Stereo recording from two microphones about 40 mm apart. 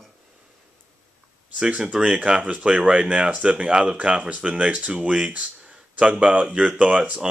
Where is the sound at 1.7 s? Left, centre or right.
Right.